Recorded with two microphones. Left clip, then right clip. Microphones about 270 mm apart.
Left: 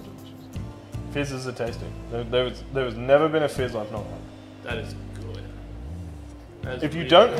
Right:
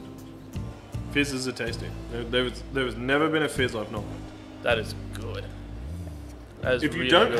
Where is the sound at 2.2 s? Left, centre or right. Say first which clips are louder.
Left 2 dB; left.